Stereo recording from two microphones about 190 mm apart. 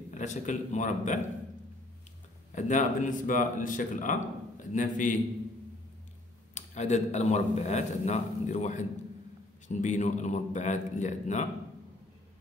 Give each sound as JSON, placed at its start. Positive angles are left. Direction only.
{"t": 0.1, "sound": "a man's voice", "side_deg": 40}
{"t": 2.5, "sound": "speech", "side_deg": 40}
{"t": 6.5, "sound": "a man's voice", "side_deg": 35}